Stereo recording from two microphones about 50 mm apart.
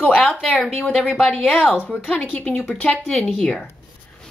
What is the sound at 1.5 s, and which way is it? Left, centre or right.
A woman's voice, left.